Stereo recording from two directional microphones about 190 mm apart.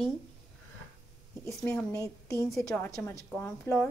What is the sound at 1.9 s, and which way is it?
Speech, 15° left (ahead or behind).